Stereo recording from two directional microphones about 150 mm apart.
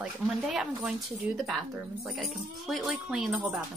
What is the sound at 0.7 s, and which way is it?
Speech, 5° right (ahead or behind).